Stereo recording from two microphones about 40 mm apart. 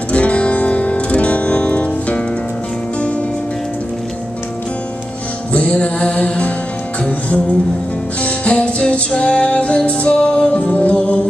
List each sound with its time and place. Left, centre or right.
0.1 s music: left
5.5 s music: left
10.5 s music: left